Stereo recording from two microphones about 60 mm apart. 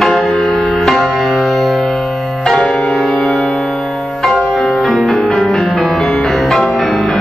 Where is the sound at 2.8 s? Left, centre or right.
Centre.